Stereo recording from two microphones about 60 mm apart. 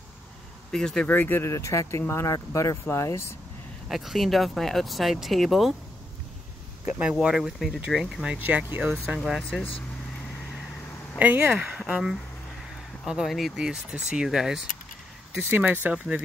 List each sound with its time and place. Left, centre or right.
0.7 s speech: centre
1.0 s speech: left
1.4 s speech: left
2.3 s speech: left
3.9 s speech: centre
6.9 s speech: centre
8.6 s speech: right
9.2 s speech: centre
11.1 s speech: right; by 13.5 s centre
13.6 s speech: centre
15.5 s speech: right